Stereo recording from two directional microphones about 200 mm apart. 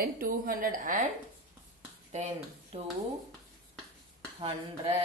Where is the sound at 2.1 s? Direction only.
35° right (ahead or behind).